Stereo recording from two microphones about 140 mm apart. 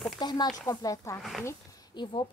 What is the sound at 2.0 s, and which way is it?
Speech, 35° left (ahead or behind).